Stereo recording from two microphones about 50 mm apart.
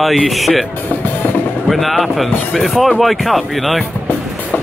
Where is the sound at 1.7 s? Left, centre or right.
Centre.